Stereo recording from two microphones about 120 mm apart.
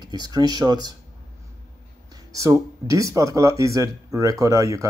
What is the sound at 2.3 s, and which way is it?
Speech, 25° right (ahead or behind).